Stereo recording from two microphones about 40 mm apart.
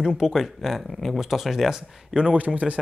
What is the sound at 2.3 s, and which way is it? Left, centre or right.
Speech, right.